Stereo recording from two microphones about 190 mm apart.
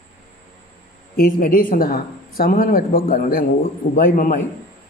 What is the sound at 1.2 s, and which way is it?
A man's voice, 50° left (ahead or behind).